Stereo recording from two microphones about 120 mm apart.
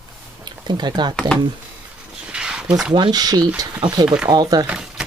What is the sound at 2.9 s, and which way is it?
Speech, 35° right (ahead or behind).